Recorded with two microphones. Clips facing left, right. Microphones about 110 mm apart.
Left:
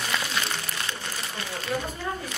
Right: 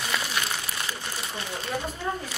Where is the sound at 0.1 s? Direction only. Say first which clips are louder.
Even; 5° right (ahead or behind).